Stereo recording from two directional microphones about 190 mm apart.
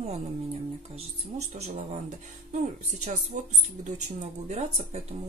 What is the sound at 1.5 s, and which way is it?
Speech, 35° right (ahead or behind).